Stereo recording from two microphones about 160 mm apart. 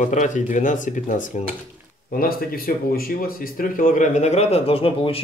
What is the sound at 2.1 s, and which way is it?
Speech, 65° left (ahead or behind).